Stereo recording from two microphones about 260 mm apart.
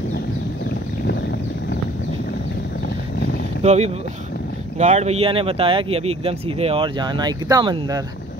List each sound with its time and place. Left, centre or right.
3.6 s speech: right